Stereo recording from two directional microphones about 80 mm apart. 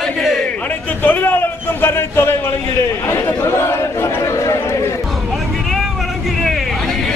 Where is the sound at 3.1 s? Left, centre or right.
Left.